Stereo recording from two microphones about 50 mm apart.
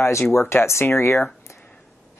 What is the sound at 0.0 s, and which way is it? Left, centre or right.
Speech, left.